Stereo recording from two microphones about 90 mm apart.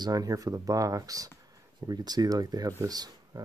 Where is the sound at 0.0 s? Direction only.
45° right (ahead or behind).